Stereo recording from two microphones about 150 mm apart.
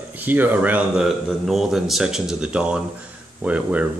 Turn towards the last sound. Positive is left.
turn(degrees=-10)  # may be behind; listen again after turning